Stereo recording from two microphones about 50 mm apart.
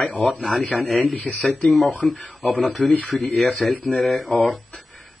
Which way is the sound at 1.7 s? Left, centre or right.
Centre.